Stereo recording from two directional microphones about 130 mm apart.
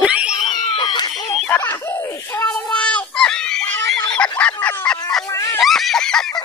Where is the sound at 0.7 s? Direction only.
40° left (ahead or behind).